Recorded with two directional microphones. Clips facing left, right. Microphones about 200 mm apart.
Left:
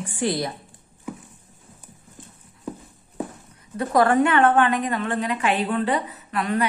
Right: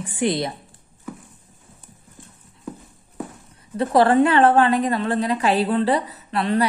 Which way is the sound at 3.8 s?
30° right (ahead or behind).